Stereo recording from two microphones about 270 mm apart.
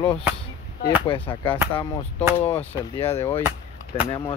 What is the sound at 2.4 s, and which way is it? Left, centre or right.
Speech, centre.